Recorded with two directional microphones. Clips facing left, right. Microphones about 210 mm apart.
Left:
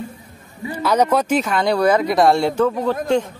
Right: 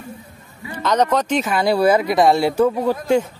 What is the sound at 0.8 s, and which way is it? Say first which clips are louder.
Speech: left 1 dB; 10° left (ahead or behind).